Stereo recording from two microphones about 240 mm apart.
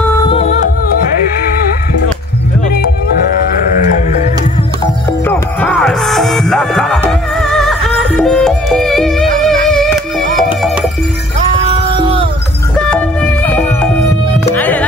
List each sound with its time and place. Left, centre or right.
0.0 s music: centre
0.3 s music: left
5.2 s music: centre
11.5 s music: right
12.7 s music: centre